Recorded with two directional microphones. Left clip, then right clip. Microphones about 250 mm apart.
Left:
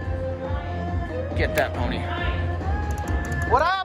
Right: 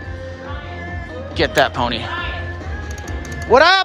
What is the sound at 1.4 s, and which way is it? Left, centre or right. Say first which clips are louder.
Speech: right 9 dB; centre.